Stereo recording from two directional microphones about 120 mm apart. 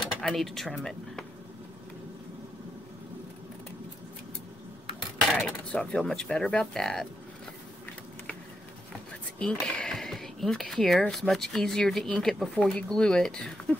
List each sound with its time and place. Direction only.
0.0 s speech: centre (ahead or behind)
5.7 s speech: 5° left (ahead or behind)
9.4 s speech: 5° left (ahead or behind)